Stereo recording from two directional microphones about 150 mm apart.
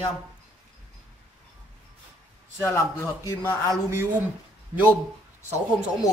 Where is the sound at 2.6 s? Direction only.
20° left (ahead or behind).